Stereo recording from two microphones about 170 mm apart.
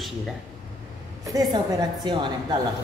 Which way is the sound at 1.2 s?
20° right (ahead or behind).